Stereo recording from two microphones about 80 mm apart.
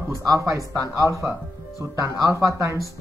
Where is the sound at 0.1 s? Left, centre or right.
Right.